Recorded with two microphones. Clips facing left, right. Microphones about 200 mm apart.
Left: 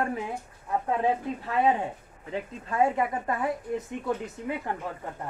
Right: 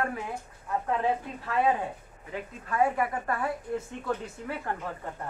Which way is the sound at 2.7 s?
20° left (ahead or behind).